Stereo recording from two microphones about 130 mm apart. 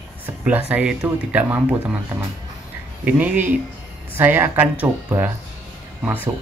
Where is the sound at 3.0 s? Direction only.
10° right (ahead or behind).